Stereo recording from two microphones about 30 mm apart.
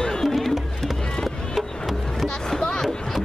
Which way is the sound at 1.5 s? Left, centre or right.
Centre.